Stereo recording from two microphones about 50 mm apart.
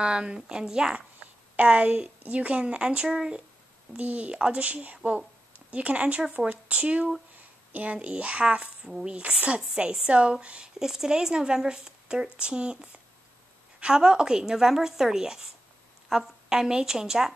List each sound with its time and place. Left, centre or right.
0.0 s a woman's voice: centre
0.9 s a woman's voice: right
3.9 s a woman's voice: right
10.8 s a woman's voice: centre